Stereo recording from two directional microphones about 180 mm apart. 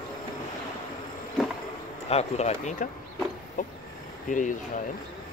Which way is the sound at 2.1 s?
35° left (ahead or behind).